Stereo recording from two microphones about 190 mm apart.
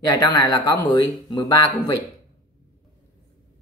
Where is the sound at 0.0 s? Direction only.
20° left (ahead or behind).